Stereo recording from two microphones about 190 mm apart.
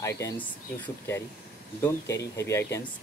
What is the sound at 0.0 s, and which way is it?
Speech, 15° left (ahead or behind).